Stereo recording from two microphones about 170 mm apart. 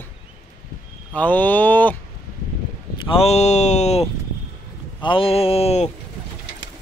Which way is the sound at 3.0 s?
35° left (ahead or behind).